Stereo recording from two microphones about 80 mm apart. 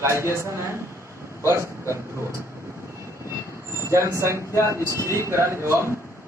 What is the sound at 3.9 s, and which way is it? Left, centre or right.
A man's voice, right.